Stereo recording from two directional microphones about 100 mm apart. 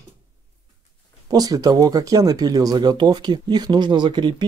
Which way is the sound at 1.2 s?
40° right (ahead or behind).